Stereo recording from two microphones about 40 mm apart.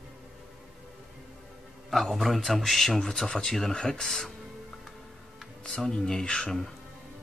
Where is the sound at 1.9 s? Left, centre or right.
Centre.